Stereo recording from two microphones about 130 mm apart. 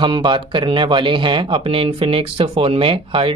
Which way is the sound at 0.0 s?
40° right (ahead or behind).